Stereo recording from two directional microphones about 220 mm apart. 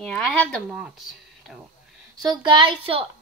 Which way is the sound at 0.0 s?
5° left (ahead or behind).